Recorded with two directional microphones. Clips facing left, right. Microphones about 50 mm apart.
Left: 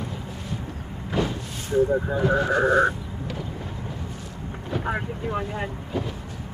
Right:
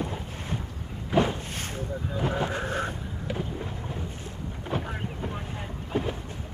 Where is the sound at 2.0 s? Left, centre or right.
Left.